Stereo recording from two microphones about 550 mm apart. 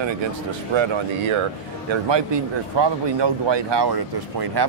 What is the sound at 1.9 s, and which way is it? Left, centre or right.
Speech, right.